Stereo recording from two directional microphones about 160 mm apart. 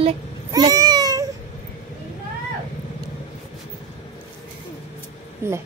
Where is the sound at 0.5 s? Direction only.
20° right (ahead or behind).